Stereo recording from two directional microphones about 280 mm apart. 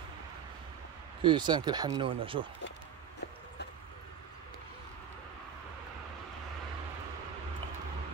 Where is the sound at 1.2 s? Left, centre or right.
Centre.